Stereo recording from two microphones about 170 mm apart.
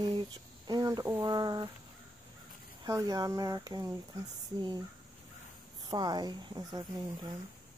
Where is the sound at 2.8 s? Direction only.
20° right (ahead or behind).